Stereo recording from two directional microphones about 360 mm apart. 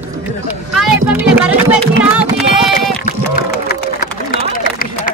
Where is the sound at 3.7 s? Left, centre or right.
Left.